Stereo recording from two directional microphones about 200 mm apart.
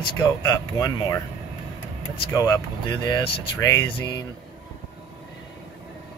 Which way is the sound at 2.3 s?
20° left (ahead or behind).